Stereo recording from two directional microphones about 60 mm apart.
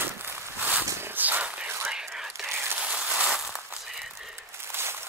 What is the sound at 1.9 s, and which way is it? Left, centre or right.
Whispering, centre.